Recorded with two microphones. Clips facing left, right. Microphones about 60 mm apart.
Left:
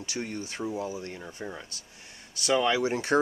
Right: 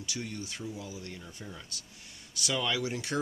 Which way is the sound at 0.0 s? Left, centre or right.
Left.